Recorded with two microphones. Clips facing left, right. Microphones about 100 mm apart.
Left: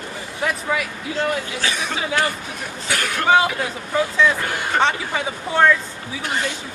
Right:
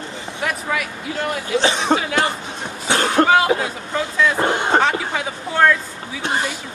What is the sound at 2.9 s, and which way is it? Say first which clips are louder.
Cough: right 8 dB; 30° right (ahead or behind).